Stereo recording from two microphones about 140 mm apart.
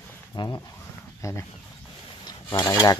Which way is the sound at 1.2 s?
20° left (ahead or behind).